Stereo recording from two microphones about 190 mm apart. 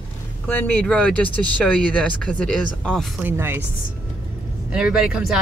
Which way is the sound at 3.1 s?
10° right (ahead or behind).